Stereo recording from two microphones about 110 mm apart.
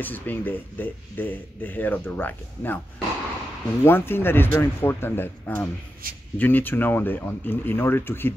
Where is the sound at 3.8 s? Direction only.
20° left (ahead or behind).